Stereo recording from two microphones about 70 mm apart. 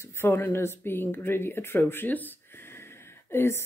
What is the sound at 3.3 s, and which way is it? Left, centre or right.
Speech, left.